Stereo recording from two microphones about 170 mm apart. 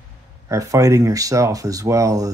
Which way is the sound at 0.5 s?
20° right (ahead or behind).